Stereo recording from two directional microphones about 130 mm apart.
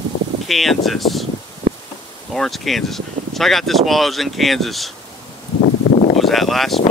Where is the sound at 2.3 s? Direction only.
Centre (ahead or behind).